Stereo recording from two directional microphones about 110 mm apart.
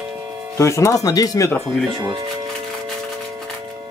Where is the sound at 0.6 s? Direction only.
25° left (ahead or behind).